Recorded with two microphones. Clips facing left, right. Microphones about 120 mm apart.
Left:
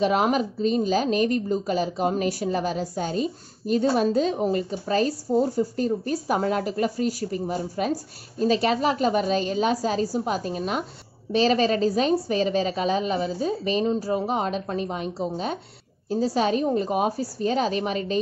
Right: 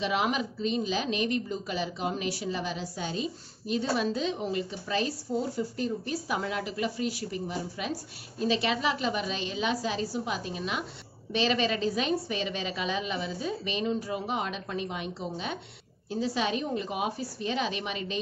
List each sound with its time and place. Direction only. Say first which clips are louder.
0.0 s a woman's voice: left 7 dB; 45° left (ahead or behind)